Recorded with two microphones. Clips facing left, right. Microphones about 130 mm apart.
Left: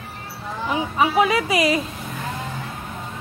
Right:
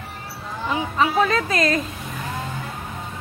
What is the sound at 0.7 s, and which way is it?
A woman's voice, 15° left (ahead or behind).